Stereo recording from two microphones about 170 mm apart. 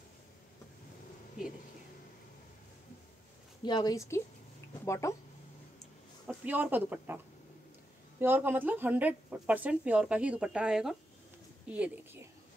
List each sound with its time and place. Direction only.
3.6 s a woman's voice: 25° left (ahead or behind)
6.2 s speech: 10° right (ahead or behind)
8.2 s a woman's voice: 10° right (ahead or behind)